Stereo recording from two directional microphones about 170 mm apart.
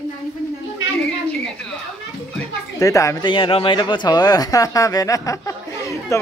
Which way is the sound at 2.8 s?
20° left (ahead or behind).